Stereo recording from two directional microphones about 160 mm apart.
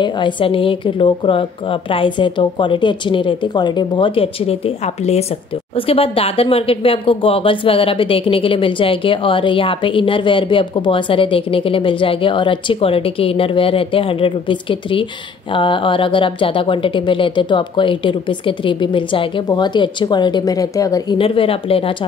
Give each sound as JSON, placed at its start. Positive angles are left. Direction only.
{"t": 0.0, "sound": "speech", "side_deg": 30}
{"t": 21.2, "sound": "speech", "side_deg": 35}